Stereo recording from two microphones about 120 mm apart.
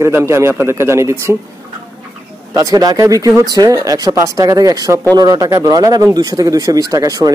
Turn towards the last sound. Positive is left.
turn(degrees=-30)  # may be behind; listen again after turning